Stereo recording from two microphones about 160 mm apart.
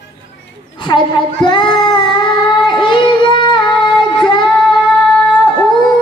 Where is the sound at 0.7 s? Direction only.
30° left (ahead or behind).